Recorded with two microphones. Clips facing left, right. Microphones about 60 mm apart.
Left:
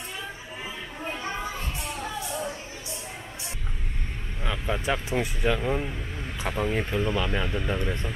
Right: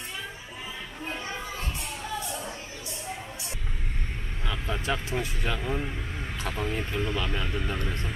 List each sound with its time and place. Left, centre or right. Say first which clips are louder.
4.5 s vehicle: left 3 dB; centre
4.8 s speech: left 2 dB; centre
7.8 s speech: left 3 dB; left